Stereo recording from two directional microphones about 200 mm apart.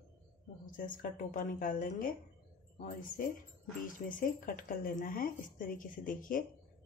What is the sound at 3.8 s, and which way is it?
Speech, 45° left (ahead or behind).